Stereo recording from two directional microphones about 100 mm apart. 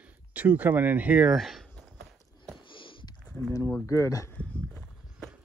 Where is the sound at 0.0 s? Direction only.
15° right (ahead or behind).